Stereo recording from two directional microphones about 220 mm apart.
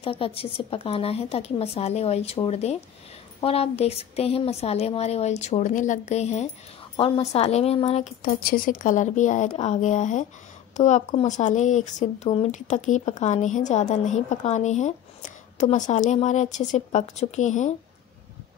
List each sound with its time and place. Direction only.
0.0 s a woman's voice: 25° left (ahead or behind)